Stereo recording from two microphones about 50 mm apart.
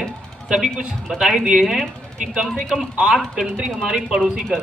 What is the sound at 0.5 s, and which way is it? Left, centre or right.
A man's voice, centre.